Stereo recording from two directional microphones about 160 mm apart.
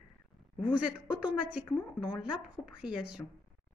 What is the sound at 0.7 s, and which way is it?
A woman's voice, 5° right (ahead or behind).